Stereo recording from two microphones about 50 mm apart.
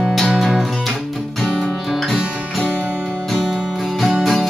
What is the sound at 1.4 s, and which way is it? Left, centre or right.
Music, centre.